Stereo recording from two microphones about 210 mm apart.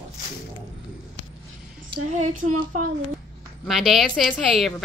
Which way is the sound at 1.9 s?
90° right.